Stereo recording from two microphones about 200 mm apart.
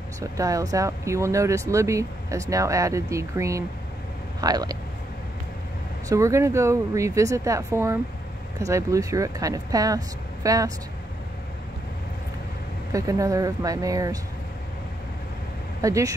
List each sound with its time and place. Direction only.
0.2 s speech: 15° right (ahead or behind)
6.0 s speech: 15° right (ahead or behind)
12.9 s speech: 15° right (ahead or behind)
15.8 s speech: 15° right (ahead or behind)